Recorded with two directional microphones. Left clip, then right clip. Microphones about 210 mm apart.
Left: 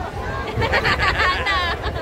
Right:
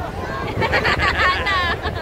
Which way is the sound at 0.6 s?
15° right (ahead or behind).